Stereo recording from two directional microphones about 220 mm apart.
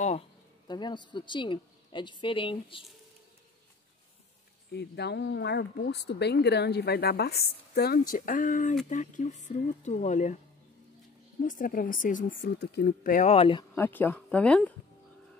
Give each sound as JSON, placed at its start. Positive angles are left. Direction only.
{"t": 0.7, "sound": "a woman's voice", "side_deg": 20}
{"t": 4.7, "sound": "speech", "side_deg": 50}
{"t": 11.4, "sound": "speech", "side_deg": 40}
{"t": 13.7, "sound": "speech", "side_deg": 10}